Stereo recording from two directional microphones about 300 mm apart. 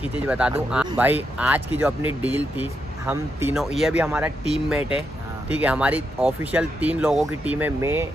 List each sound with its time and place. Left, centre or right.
0.0 s speech: centre
4.7 s speech: centre
5.5 s speech: centre